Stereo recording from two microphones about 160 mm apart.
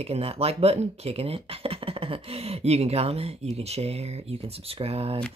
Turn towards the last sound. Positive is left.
turn(degrees=-40)  # may be behind; listen again after turning